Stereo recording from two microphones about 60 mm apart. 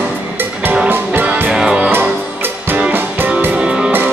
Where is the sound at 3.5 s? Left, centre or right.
Centre.